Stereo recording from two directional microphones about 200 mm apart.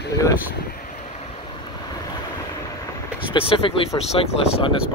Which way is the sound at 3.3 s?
30° left (ahead or behind).